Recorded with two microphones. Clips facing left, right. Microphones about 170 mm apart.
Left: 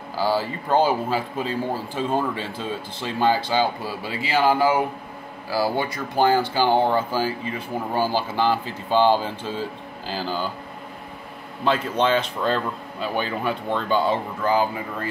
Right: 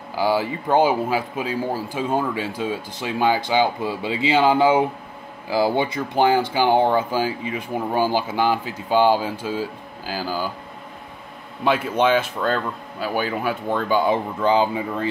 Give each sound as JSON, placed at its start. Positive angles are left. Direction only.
{"t": 0.1, "sound": "speech", "side_deg": -15}
{"t": 11.6, "sound": "speech", "side_deg": -10}